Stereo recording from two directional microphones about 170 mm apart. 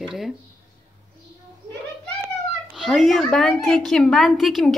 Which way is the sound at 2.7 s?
Centre (ahead or behind).